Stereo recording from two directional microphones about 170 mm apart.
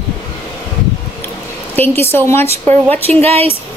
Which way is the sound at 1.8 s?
15° left (ahead or behind).